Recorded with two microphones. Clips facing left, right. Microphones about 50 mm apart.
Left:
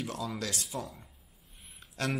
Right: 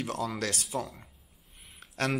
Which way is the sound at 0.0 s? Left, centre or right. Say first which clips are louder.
Right 4 dB; right.